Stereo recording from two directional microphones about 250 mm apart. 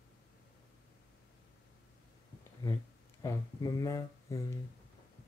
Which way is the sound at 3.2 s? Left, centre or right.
Centre.